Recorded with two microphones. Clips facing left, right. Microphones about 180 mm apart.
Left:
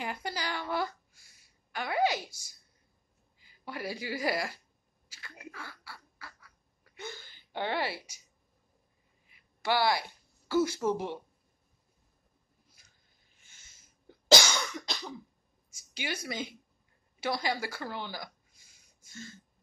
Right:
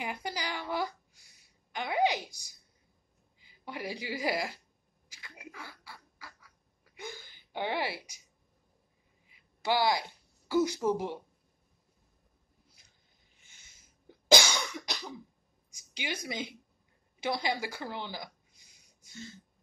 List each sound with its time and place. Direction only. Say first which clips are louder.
0.0 s a sound: left 1 dB; 15° right (ahead or behind)
3.3 s a woman's voice: even; 15° right (ahead or behind)
5.1 s bird: left 2 dB; 15° right (ahead or behind)
9.3 s a woman's voice: even; 15° right (ahead or behind)
13.4 s cough: even; 15° right (ahead or behind)
15.7 s a woman's voice: left 1 dB; 15° right (ahead or behind)
17.2 s a sound: even; 15° right (ahead or behind)